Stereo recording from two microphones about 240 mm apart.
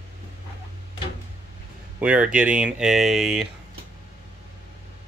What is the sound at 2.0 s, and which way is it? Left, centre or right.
Speech, centre.